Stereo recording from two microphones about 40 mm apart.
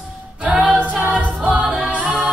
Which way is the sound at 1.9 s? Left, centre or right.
Right.